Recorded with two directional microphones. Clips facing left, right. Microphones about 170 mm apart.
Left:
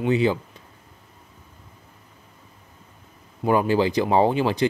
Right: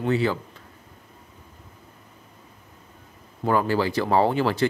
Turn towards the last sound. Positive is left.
turn(degrees=15)  # may be behind; listen again after turning